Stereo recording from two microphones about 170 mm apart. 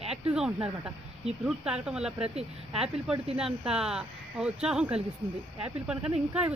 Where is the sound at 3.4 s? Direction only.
5° right (ahead or behind).